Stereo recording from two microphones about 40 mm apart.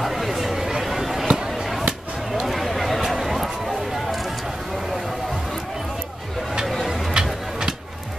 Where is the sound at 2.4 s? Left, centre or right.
Centre.